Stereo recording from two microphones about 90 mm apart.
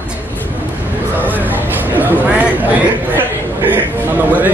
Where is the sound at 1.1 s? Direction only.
20° right (ahead or behind).